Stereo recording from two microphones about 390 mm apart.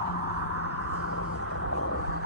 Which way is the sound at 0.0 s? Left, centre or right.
Left.